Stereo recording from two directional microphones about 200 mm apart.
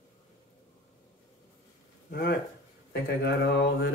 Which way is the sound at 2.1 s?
50° left (ahead or behind).